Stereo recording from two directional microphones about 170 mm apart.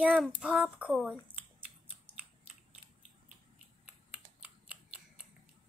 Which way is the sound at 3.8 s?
10° right (ahead or behind).